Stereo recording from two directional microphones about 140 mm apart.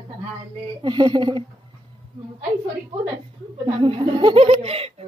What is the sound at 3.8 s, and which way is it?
Speech, 35° right (ahead or behind).